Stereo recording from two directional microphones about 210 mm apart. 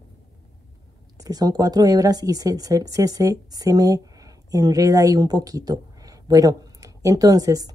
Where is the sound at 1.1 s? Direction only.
15° right (ahead or behind).